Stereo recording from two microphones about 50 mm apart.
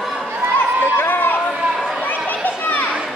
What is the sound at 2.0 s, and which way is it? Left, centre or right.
Children playing, left.